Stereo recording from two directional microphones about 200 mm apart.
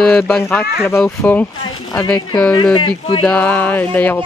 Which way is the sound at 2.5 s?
20° left (ahead or behind).